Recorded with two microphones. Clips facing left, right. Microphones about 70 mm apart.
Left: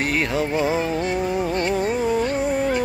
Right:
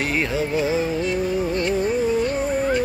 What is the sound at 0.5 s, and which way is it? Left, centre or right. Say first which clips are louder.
Music: even; left.